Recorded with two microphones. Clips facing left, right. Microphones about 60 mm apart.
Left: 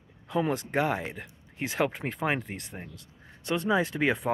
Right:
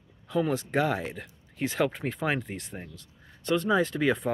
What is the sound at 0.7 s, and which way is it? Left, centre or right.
Speech, centre.